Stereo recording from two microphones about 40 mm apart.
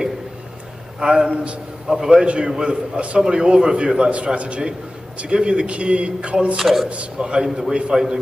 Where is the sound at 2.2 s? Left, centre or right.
Right.